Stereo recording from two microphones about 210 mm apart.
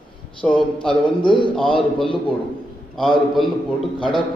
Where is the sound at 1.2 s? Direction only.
20° left (ahead or behind).